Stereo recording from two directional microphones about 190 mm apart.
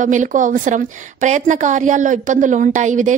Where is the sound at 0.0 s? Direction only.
40° right (ahead or behind).